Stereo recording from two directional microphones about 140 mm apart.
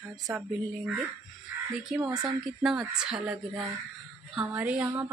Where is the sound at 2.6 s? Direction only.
Centre (ahead or behind).